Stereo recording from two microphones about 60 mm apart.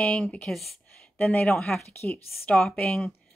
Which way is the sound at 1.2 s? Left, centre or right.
Left.